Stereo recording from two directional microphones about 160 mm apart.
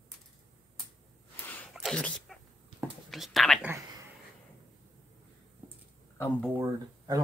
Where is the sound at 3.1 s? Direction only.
Centre (ahead or behind).